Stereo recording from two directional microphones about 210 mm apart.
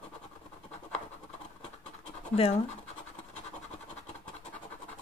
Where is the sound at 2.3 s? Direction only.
30° left (ahead or behind).